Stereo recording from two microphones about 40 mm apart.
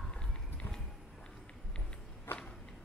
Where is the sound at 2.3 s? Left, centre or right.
Left.